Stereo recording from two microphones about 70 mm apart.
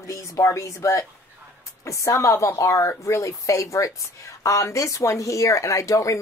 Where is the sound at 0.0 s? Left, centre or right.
Left.